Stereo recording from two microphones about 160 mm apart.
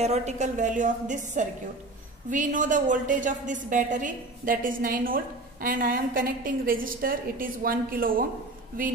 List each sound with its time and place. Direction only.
0.0 s a woman's voice: 45° right (ahead or behind); by 8.3 s 65° right (ahead or behind)